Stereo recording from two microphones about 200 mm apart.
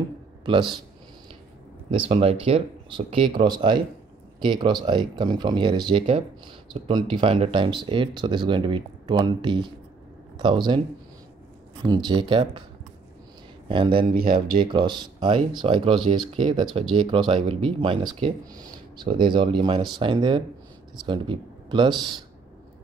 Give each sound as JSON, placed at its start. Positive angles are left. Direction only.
{"t": 0.5, "sound": "speech", "side_deg": -25}
{"t": 1.9, "sound": "speech", "side_deg": -30}
{"t": 11.8, "sound": "speech", "side_deg": -25}
{"t": 13.7, "sound": "speech", "side_deg": -25}
{"t": 14.1, "sound": "speech", "side_deg": -45}
{"t": 14.6, "sound": "speech", "side_deg": -25}